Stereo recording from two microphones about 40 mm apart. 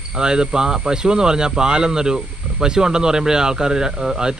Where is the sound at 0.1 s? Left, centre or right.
Centre.